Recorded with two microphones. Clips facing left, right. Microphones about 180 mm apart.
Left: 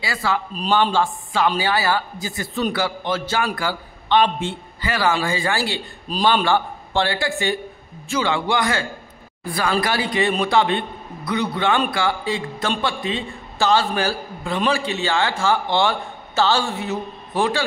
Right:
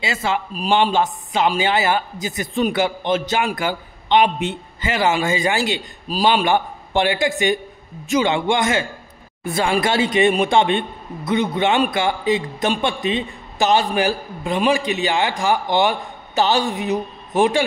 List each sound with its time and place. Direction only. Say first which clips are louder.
0.0 s a man's voice: right 1 dB; 20° right (ahead or behind)
6.0 s a man's voice: right 1 dB; 10° right (ahead or behind)